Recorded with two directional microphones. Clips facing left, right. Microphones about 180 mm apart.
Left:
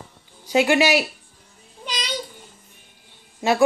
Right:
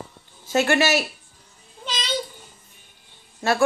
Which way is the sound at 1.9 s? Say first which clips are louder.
Right 1 dB; 10° left (ahead or behind).